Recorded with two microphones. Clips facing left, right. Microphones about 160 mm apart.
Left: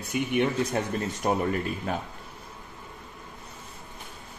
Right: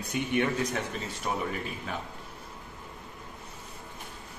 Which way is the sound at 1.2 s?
50° left (ahead or behind).